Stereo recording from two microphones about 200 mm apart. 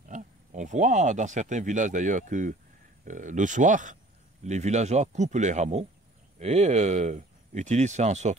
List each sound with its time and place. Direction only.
0.1 s speech: 35° right (ahead or behind)